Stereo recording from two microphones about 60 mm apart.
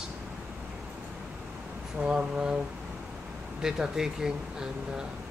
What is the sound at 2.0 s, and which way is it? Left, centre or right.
Speech, centre.